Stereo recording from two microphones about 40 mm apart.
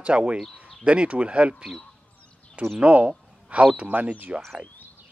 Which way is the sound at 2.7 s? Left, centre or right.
Right.